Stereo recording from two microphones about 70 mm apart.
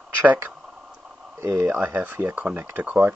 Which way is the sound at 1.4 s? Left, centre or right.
Right.